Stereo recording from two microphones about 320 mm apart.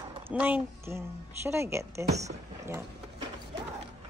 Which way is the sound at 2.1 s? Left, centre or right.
Right.